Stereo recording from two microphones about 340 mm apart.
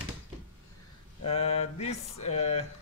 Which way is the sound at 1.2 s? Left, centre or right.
Centre.